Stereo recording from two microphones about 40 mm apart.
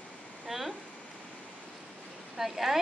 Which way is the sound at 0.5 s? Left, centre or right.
Centre.